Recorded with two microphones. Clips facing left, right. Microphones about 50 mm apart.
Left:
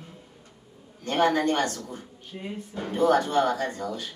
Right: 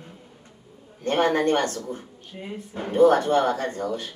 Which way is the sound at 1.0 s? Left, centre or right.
Right.